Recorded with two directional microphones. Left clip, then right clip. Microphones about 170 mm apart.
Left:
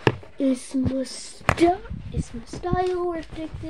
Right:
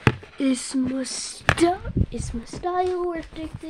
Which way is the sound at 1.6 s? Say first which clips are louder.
Left 1 dB; 50° right (ahead or behind).